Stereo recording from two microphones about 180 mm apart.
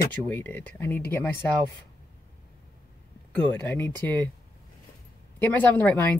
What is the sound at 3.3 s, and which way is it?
Speech, 10° left (ahead or behind).